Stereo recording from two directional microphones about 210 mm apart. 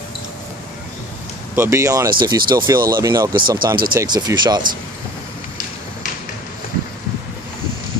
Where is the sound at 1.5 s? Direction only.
10° right (ahead or behind).